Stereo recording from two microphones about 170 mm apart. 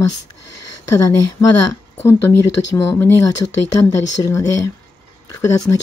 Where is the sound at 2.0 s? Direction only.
15° left (ahead or behind).